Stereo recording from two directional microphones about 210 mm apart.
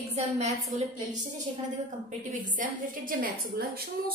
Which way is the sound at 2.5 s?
40° right (ahead or behind).